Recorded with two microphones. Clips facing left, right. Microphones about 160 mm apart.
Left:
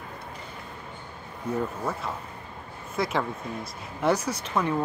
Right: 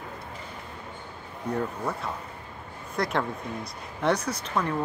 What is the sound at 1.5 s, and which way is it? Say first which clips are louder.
Speech: even; centre (ahead or behind).